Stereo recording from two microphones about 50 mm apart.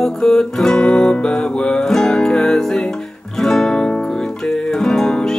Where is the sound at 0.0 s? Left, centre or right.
Centre.